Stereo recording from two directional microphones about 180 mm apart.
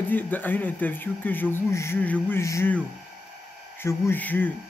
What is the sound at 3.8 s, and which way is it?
Speech, 15° left (ahead or behind).